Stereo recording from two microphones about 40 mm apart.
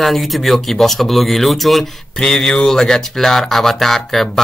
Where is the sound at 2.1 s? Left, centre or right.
Centre.